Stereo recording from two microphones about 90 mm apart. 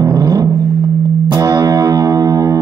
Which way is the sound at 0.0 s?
45° right (ahead or behind).